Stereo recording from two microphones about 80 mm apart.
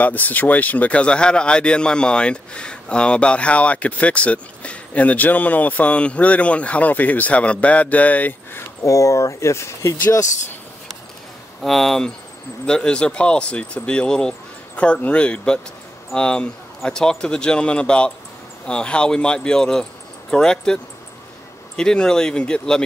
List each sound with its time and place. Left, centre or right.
0.0 s speech: left
8.8 s speech: left
11.6 s speech: centre